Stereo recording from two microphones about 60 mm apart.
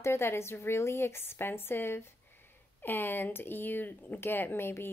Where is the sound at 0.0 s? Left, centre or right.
Left.